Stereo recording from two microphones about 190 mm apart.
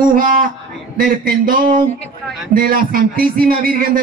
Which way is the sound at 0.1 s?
45° right (ahead or behind).